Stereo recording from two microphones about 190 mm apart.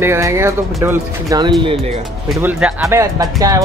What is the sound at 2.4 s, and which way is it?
Speech, 5° right (ahead or behind).